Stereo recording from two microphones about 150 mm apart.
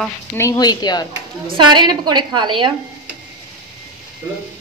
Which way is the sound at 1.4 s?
30° right (ahead or behind).